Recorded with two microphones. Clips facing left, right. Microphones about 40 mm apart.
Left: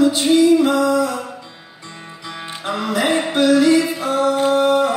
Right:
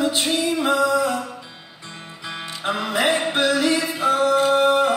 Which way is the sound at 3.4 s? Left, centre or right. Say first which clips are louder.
Left 9 dB; right.